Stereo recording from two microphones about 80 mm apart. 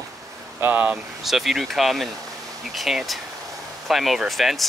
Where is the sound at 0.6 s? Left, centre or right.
Right.